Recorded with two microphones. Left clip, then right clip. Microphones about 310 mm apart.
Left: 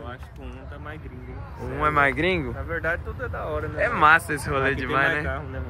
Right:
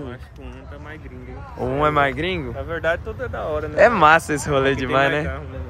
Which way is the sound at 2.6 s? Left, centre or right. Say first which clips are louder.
Right 4 dB; right.